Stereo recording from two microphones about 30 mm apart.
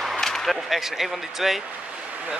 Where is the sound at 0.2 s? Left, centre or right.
Centre.